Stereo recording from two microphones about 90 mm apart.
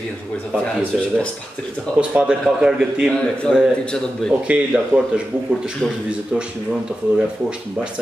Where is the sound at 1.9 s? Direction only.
15° right (ahead or behind).